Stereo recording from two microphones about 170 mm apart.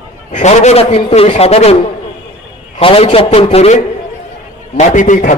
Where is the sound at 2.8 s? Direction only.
35° left (ahead or behind).